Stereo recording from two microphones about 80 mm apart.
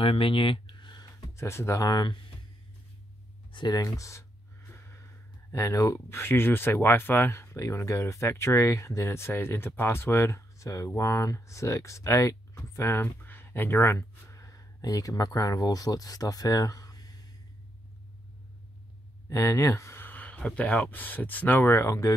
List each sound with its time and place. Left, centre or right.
0.2 s a sound: left
1.3 s speech: left
1.8 s speech: left
3.7 s speech: left
5.5 s speech: left
13.9 s speech: left
19.2 s speech: left
20.1 s speech: centre
21.7 s speech: left